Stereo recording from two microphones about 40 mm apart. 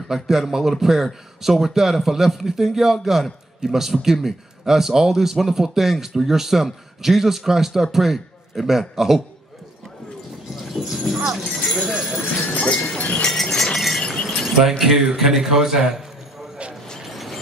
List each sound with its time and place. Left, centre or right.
0.1 s a man's voice: centre
10.5 s clip-clop: centre
12.4 s speech: left
13.3 s a sound: centre
14.2 s keys jangling: centre
14.8 s a man's voice: centre
17.0 s a sound: centre